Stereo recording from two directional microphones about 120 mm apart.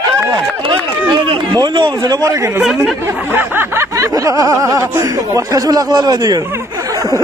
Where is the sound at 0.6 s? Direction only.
40° right (ahead or behind).